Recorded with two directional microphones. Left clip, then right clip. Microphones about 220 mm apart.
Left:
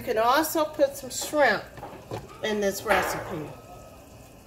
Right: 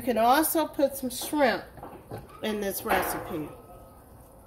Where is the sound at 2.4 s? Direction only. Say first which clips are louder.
Left 4 dB; 40° right (ahead or behind).